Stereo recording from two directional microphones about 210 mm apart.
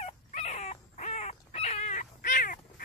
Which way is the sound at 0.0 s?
30° left (ahead or behind).